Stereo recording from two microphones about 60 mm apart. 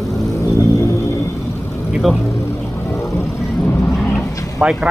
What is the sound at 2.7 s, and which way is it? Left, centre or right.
Music, left.